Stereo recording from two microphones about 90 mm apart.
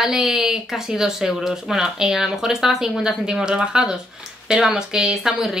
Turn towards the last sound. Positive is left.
turn(degrees=-5)  # may be behind; listen again after turning